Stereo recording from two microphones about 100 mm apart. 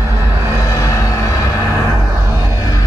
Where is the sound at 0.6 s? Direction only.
30° left (ahead or behind).